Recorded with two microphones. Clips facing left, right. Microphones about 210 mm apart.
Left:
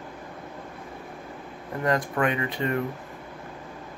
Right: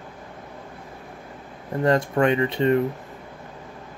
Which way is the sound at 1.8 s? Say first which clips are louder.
Right 5 dB; 30° right (ahead or behind).